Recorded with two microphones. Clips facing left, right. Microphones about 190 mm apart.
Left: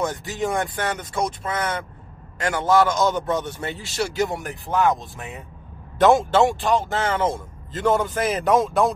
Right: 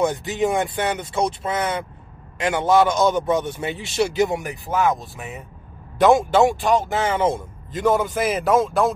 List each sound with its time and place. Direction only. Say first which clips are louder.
0.0 s speech: right 4 dB; 20° right (ahead or behind)
1.1 s speech: right 3 dB; 30° right (ahead or behind)
2.3 s a man's voice: right 2 dB; 20° right (ahead or behind)
4.6 s a man's voice: even; centre (ahead or behind)
6.1 s a man's voice: right 1 dB; 15° right (ahead or behind)